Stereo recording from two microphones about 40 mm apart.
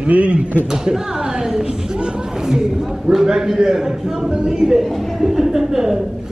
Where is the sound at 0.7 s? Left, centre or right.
Centre.